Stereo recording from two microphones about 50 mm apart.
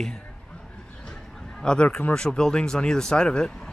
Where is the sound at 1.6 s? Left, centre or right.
Centre.